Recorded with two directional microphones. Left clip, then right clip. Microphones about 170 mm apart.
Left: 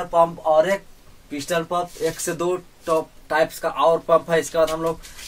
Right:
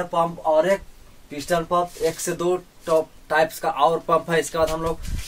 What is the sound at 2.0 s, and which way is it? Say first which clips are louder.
Speech: right 1 dB; 10° right (ahead or behind).